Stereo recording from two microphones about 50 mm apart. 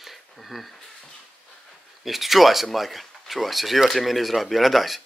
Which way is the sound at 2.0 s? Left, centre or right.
Centre.